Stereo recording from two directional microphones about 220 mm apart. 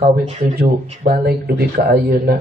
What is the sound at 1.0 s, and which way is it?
Speech, 45° right (ahead or behind).